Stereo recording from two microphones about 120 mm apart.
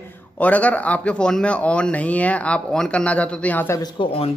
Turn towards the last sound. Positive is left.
turn(degrees=50)  # may be behind; listen again after turning